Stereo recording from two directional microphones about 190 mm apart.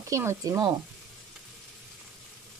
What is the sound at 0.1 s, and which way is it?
Speech, 15° right (ahead or behind).